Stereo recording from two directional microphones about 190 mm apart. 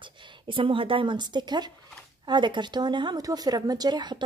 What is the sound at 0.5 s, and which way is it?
A woman's voice, 30° right (ahead or behind).